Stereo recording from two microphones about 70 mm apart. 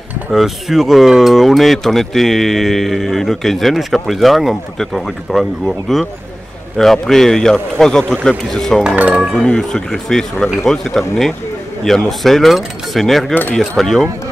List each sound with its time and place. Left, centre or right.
0.3 s speech: centre
13.3 s speech: left
13.6 s speech: centre